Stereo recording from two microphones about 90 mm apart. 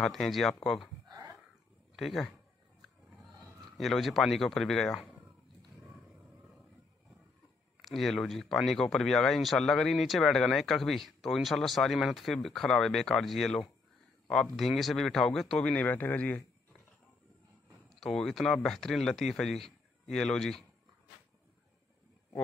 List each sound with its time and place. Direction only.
0.0 s speech: centre (ahead or behind)
2.0 s speech: centre (ahead or behind)
3.7 s speech: centre (ahead or behind)
7.8 s speech: centre (ahead or behind); by 16.4 s 15° left (ahead or behind)
17.8 s speech: 5° left (ahead or behind)